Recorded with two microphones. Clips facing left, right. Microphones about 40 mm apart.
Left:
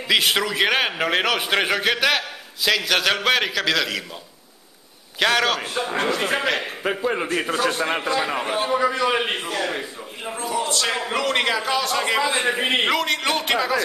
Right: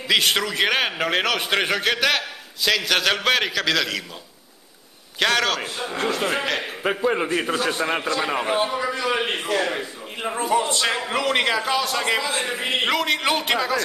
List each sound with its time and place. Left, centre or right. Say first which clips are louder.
0.1 s a man's voice: left 1 dB; centre
5.2 s a man's voice: left 1 dB; centre
5.9 s a man's voice: left 1 dB; left
7.0 s a man's voice: right 2 dB; centre
8.7 s a man's voice: left 3 dB; centre
10.3 s speech: right 5 dB; right
10.6 s a man's voice: right 1 dB; centre
11.0 s a man's voice: even; centre
12.2 s a man's voice: left 4 dB; left
12.8 s a man's voice: even; centre